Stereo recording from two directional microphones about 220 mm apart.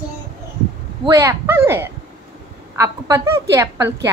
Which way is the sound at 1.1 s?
15° right (ahead or behind).